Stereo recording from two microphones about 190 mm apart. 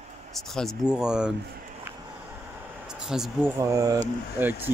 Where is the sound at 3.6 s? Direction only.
15° right (ahead or behind).